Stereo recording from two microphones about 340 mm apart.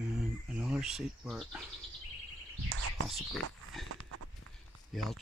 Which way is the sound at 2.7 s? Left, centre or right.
Right.